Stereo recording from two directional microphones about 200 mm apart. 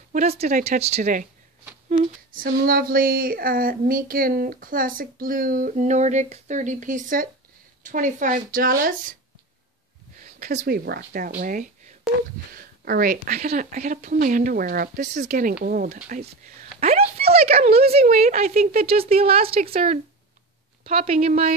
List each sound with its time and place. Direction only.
0.1 s speech: 35° right (ahead or behind)
10.2 s speech: 40° right (ahead or behind)
16.8 s a sound: 30° right (ahead or behind)
18.0 s speech: 35° right (ahead or behind)